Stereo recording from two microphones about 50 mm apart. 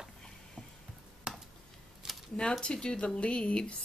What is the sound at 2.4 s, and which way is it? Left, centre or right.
Speech, centre.